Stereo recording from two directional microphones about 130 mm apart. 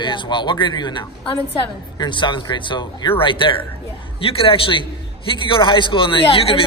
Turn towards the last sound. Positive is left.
turn(degrees=45)  # may be behind; listen again after turning